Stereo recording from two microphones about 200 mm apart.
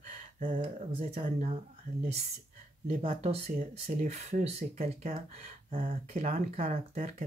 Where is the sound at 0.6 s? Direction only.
30° right (ahead or behind).